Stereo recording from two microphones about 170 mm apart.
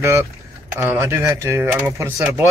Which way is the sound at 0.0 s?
15° right (ahead or behind).